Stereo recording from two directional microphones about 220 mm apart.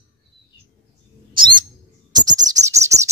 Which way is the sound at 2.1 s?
15° right (ahead or behind).